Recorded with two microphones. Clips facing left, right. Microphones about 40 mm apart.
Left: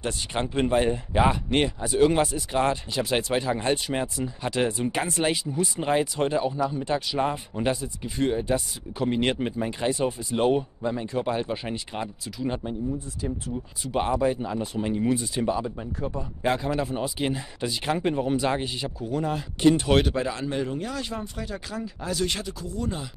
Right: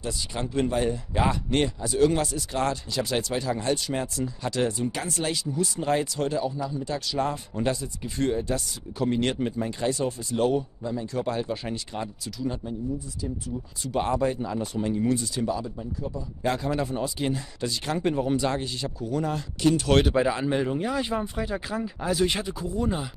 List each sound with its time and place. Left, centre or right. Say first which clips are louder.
0.0 s speech: left 3 dB; left
1.2 s speech: left 1 dB; centre
7.1 s speech: left 1 dB; left
11.1 s speech: right 1 dB; centre
14.1 s speech: left 1 dB; centre; by 15.9 s left
16.0 s a man's voice: left 4 dB; left
16.4 s speech: left 1 dB; centre
19.6 s speech: left 3 dB; left
20.1 s speech: right 4 dB; centre